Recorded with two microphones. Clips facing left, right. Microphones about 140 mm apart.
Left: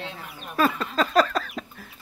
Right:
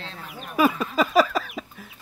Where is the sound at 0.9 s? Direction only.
10° right (ahead or behind).